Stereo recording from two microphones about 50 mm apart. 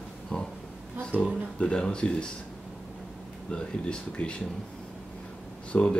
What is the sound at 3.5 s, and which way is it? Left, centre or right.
Speech, centre.